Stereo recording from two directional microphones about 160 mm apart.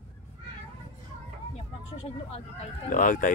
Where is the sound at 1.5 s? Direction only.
40° left (ahead or behind).